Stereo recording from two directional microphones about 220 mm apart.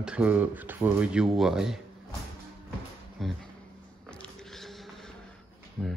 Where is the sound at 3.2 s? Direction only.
Centre (ahead or behind).